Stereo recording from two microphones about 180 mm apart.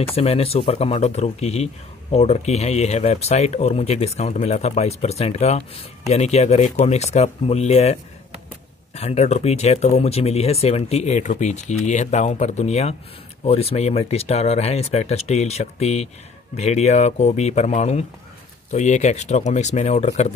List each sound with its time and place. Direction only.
0.0 s speech: 35° left (ahead or behind)